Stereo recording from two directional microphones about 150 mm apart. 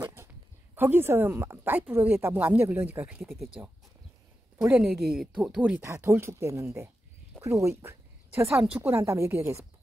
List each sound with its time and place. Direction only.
0.0 s a sound: 15° right (ahead or behind)
0.7 s speech: 15° right (ahead or behind)
4.7 s speech: 5° right (ahead or behind); by 9.6 s 20° right (ahead or behind)